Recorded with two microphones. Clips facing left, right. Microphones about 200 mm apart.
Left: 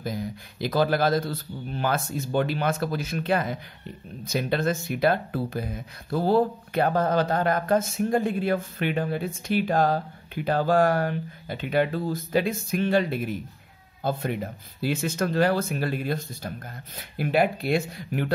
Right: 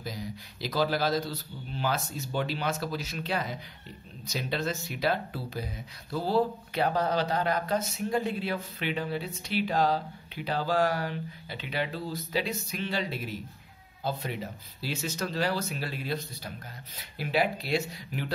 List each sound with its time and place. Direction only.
0.0 s speech: 55° left (ahead or behind)